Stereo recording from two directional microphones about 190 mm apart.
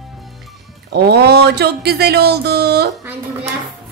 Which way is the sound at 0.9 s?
60° right (ahead or behind).